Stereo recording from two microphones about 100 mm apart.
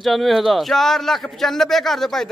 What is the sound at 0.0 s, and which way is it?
Speech, centre (ahead or behind).